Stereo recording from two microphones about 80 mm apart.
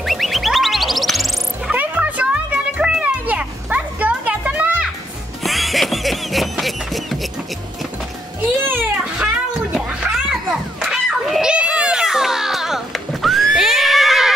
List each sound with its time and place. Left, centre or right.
0.0 s music: centre
1.7 s music: centre
5.4 s a sound: centre
8.4 s music: right
9.8 s music: centre